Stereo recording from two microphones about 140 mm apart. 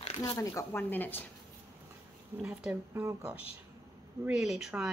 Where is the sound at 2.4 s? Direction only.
5° right (ahead or behind).